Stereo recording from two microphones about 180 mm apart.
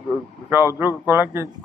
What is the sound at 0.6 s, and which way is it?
Speech, 20° left (ahead or behind).